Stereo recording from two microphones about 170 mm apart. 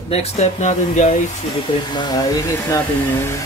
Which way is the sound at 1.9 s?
25° left (ahead or behind).